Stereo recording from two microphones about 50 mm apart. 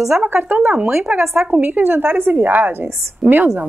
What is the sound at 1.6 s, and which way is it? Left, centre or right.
Speech, right.